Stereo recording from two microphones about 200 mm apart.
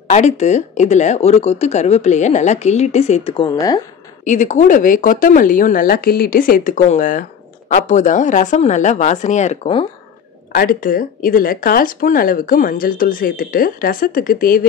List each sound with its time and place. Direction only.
0.1 s speech: 35° left (ahead or behind); by 3.8 s 20° left (ahead or behind)
4.2 s speech: 40° left (ahead or behind)
10.5 s speech: 45° left (ahead or behind)